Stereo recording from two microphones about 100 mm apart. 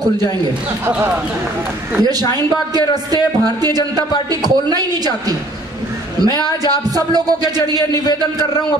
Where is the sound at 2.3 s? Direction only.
40° right (ahead or behind).